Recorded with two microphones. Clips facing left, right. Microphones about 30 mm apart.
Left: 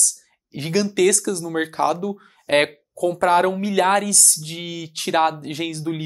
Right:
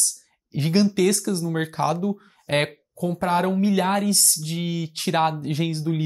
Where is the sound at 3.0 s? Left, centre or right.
Left.